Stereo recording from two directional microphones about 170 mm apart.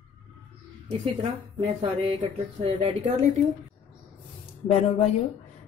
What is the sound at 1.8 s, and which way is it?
Speech, 30° right (ahead or behind).